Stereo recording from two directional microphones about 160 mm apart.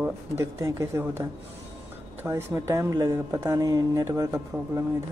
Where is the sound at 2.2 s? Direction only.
15° right (ahead or behind).